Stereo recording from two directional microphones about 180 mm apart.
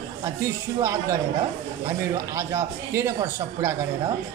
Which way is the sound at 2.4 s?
15° right (ahead or behind).